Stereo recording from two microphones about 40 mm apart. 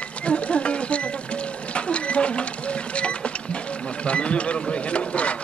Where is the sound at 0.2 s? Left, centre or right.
Left.